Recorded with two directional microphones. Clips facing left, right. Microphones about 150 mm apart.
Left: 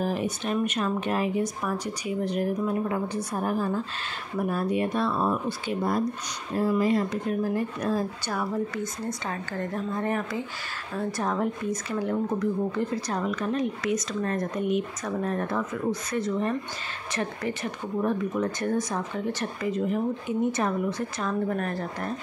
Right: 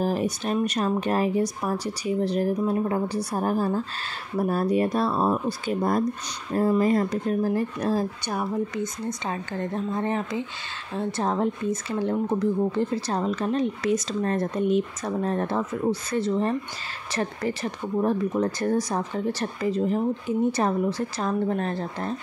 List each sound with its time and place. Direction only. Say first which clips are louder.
0.0 s speech: right 3 dB; 40° right (ahead or behind)
6.5 s speech: right 3 dB; 50° right (ahead or behind); by 8.0 s 30° right (ahead or behind)
8.3 s speech: right 1 dB; 20° right (ahead or behind)